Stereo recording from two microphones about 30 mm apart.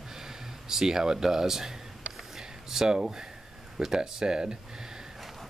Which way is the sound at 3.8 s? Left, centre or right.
Centre.